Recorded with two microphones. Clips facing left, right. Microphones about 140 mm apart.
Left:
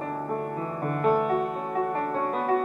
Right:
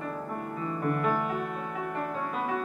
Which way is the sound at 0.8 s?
45° left (ahead or behind).